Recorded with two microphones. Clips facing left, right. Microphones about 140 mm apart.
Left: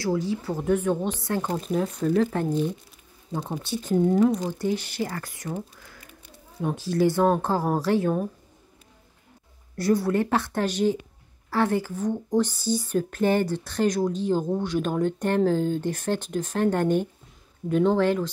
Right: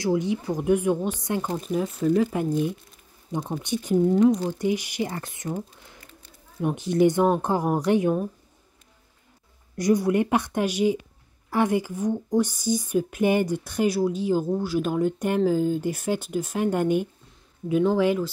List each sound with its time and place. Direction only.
0.0 s speech: 20° right (ahead or behind)
1.7 s speech: 5° right (ahead or behind)
4.0 s speech: centre (ahead or behind)
4.5 s speech: 15° right (ahead or behind)
9.8 s speech: 15° right (ahead or behind)